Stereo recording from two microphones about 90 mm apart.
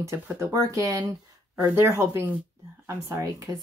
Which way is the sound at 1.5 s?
20° right (ahead or behind).